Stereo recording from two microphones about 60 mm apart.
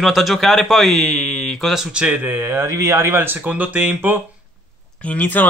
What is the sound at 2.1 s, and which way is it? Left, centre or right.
Speech, right.